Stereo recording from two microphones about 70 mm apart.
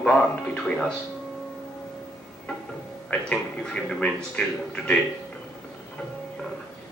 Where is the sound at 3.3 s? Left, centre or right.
Centre.